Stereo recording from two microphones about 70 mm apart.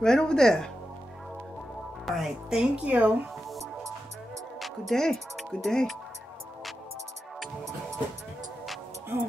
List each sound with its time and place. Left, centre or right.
0.0 s speech: centre
2.0 s speech: centre
2.9 s speech: right
4.6 s speech: centre